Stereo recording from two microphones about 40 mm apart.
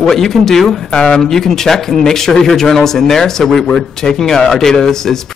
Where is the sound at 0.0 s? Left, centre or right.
Centre.